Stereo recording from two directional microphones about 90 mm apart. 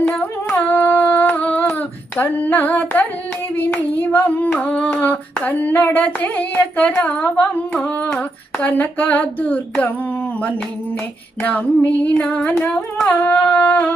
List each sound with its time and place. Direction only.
0.7 s singing: 25° left (ahead or behind)
2.1 s female singing: 20° left (ahead or behind)
3.5 s singing: 20° left (ahead or behind)
11.4 s singing: 15° left (ahead or behind)